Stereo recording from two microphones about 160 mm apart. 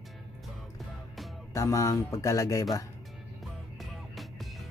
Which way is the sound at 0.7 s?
Centre (ahead or behind).